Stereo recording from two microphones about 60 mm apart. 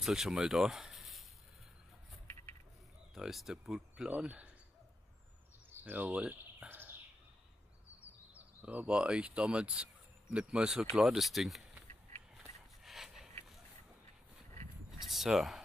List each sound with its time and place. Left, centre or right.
0.0 s speech: centre
3.2 s speech: centre
3.9 s speech: centre
5.9 s speech: right
6.7 s bird: right
8.0 s speech: right; by 11.6 s centre
12.8 s a sound: centre
14.9 s a sound: centre